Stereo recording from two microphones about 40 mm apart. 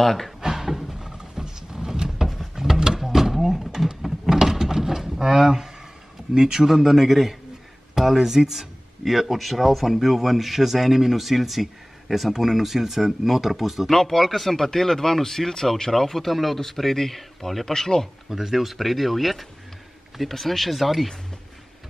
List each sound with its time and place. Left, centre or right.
0.0 s speech: centre
0.4 s cupboard open or close: centre
0.9 s vehicle: centre
2.2 s a sound: centre
6.3 s a man's voice: centre
13.8 s speech: centre
18.3 s speech: centre